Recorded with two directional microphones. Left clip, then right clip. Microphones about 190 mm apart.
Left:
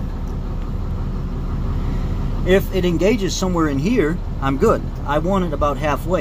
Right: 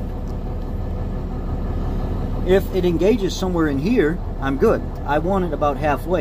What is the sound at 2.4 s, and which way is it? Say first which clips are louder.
Speech: left 1 dB; 25° left (ahead or behind).